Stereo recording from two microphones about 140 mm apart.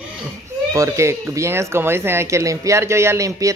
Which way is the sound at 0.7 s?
20° right (ahead or behind).